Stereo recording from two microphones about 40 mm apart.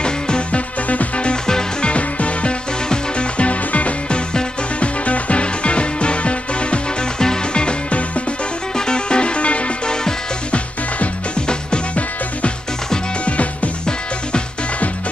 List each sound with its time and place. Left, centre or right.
0.0 s music: left
0.8 s music: left
11.4 s music: left